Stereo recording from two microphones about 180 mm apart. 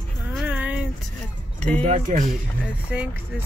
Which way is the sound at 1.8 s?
45° right (ahead or behind).